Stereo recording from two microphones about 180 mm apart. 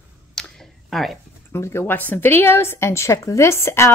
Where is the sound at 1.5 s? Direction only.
15° left (ahead or behind).